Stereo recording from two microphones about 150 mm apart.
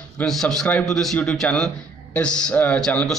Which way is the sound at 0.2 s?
5° left (ahead or behind).